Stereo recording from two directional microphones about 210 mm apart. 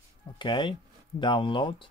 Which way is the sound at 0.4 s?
25° left (ahead or behind).